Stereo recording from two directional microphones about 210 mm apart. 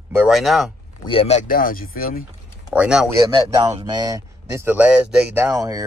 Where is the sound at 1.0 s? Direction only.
25° left (ahead or behind); by 2.2 s 45° left (ahead or behind).